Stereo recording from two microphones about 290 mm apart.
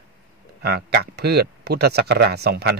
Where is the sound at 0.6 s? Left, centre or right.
Right.